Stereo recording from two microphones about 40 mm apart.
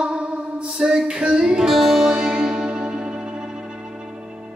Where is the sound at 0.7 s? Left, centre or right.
Centre.